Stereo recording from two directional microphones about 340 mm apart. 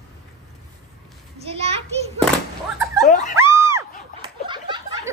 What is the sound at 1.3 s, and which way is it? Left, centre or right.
Children playing, centre.